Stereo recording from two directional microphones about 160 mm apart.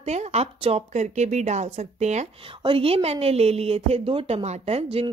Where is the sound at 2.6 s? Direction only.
35° right (ahead or behind).